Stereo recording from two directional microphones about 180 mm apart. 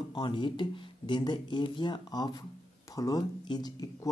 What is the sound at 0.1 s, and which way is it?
Speech, 25° left (ahead or behind).